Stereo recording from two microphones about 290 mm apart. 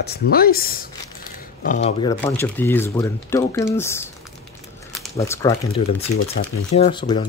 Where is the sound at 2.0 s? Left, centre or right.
Centre.